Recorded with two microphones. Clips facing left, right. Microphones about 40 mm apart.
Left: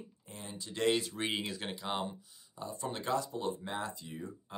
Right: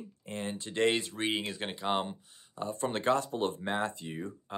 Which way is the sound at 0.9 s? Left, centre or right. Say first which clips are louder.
Right 3 dB; centre.